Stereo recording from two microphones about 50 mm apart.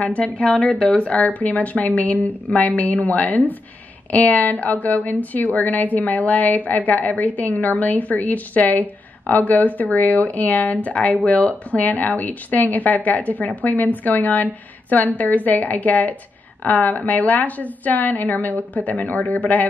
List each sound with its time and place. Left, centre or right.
0.0 s speech: left